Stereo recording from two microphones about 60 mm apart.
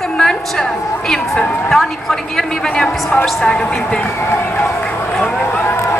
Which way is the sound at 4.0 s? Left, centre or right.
Left.